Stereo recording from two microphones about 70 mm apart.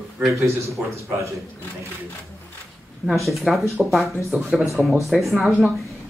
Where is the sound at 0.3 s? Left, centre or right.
Right.